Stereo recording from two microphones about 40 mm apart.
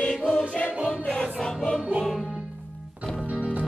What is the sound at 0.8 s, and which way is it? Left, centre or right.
Music, centre.